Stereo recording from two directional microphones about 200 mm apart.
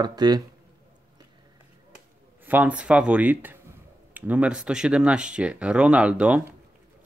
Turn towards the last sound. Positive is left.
turn(degrees=-5)  # may be behind; listen again after turning